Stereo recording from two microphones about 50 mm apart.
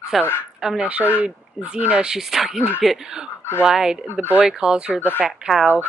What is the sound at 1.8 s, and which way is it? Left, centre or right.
Speech, right.